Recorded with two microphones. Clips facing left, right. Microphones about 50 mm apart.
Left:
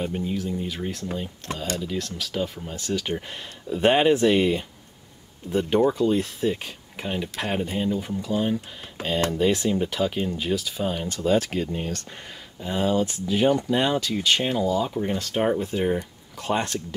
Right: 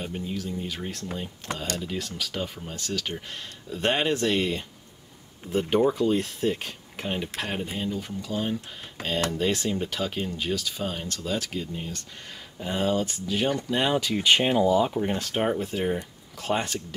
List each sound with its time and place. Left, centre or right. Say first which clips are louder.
0.0 s speech: left 5 dB; centre
5.5 s speech: left 2 dB; centre
7.7 s speech: left 5 dB; centre
11.2 s speech: left 9 dB; left
11.6 s speech: left 6 dB; left
12.6 s speech: left 2 dB; centre
13.7 s speech: left 2 dB; centre